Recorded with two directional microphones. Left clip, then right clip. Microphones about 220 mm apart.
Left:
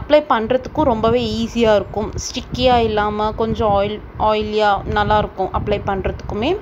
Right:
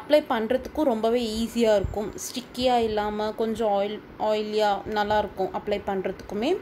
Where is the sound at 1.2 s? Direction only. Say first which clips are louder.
Left 7 dB; 35° left (ahead or behind).